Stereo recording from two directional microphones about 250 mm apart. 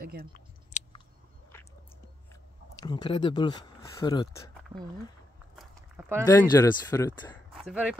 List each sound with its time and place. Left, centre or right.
0.0 s speech: right
0.8 s a sound: left
2.8 s speech: centre
5.6 s a sound: centre
6.2 s speech: centre
7.5 s speech: centre